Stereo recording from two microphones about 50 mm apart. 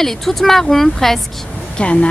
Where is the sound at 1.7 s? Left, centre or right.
Left.